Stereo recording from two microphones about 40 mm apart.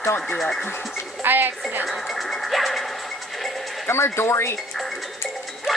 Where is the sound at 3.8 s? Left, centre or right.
Left.